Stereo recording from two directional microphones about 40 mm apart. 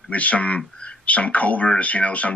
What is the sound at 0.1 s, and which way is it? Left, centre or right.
Speech, left.